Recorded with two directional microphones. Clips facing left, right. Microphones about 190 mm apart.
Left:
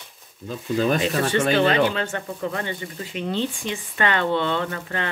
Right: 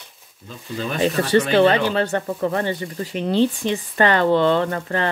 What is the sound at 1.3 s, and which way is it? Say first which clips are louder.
Speech: right 5 dB; 40° right (ahead or behind).